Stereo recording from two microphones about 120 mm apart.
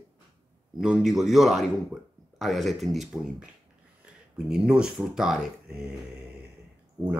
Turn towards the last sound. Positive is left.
turn(degrees=-25)  # may be behind; listen again after turning